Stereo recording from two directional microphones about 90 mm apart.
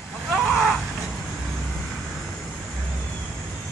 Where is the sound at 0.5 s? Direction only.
Centre (ahead or behind).